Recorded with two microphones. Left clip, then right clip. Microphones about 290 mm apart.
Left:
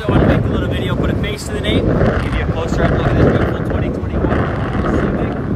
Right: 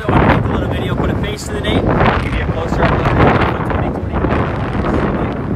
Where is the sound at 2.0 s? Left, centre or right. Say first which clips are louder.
Right 3 dB; centre.